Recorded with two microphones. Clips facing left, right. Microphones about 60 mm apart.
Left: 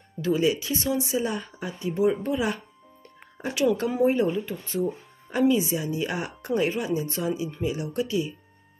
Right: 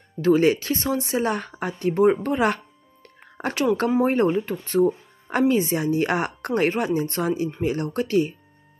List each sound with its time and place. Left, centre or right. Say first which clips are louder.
0.2 s a woman's voice: right 6 dB; right
4.0 s speech: right 2 dB; right